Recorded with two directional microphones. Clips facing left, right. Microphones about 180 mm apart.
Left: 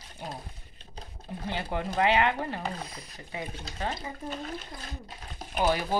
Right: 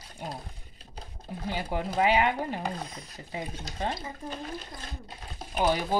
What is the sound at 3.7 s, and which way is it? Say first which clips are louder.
Speech: right 2 dB; 20° right (ahead or behind).